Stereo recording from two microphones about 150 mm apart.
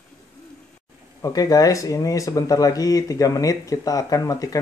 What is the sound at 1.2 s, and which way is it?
Speech, 20° left (ahead or behind).